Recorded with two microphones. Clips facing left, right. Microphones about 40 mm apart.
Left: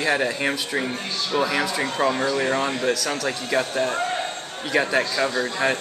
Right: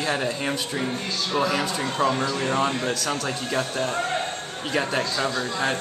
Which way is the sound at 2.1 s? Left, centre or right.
Left.